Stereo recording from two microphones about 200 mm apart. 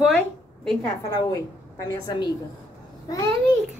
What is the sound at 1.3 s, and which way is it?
Speech, 20° left (ahead or behind).